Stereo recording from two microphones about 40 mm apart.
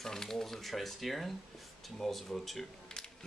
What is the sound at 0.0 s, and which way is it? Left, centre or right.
Speech, centre.